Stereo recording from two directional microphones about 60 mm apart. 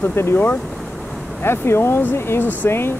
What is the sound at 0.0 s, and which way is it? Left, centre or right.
Speech, left.